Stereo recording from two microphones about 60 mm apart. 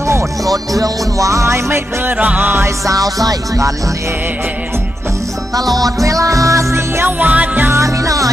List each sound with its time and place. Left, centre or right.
0.5 s music: right
2.0 s music: right
2.9 s music: right
6.0 s music: right
7.1 s music: right
7.7 s music: right